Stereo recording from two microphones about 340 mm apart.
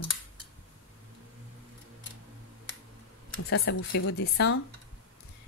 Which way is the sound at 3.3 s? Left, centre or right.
Left.